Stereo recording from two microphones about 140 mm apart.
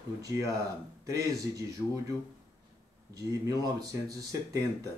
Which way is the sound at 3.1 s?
25° right (ahead or behind).